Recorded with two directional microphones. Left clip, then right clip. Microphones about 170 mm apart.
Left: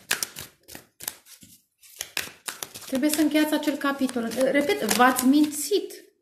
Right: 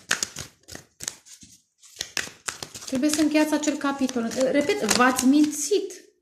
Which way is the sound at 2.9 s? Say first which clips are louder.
Right 1 dB; 30° right (ahead or behind).